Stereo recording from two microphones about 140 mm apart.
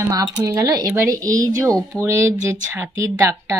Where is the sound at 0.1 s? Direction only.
25° right (ahead or behind).